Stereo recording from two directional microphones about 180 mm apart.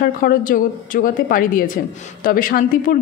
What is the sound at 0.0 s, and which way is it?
A woman's voice, 50° left (ahead or behind).